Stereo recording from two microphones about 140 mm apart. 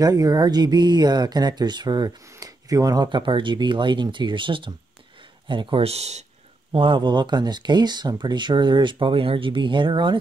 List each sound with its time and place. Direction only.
0.0 s speech: 25° right (ahead or behind); by 6.2 s 50° right (ahead or behind)
6.7 s speech: 40° right (ahead or behind)